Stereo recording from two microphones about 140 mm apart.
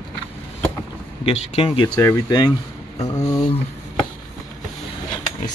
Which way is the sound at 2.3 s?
30° left (ahead or behind).